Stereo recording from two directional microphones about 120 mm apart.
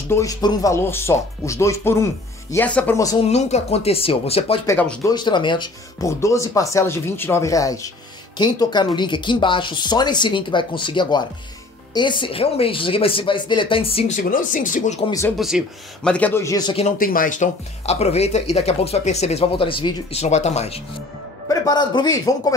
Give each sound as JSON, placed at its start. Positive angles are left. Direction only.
{"t": 0.1, "sound": "speech", "side_deg": 30}
{"t": 2.5, "sound": "a man's voice", "side_deg": 15}
{"t": 3.2, "sound": "speech", "side_deg": 65}
{"t": 5.0, "sound": "speech", "side_deg": 35}
{"t": 5.9, "sound": "speech", "side_deg": 25}
{"t": 14.0, "sound": "speech", "side_deg": 90}
{"t": 15.3, "sound": "speech", "side_deg": -5}
{"t": 16.0, "sound": "a man's voice", "side_deg": 10}
{"t": 16.7, "sound": "speech", "side_deg": 85}
{"t": 20.2, "sound": "speech", "side_deg": 70}
{"t": 21.5, "sound": "speech", "side_deg": 35}